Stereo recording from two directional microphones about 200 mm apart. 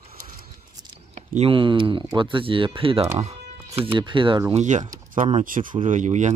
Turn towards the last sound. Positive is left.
turn(degrees=-35)  # may be behind; listen again after turning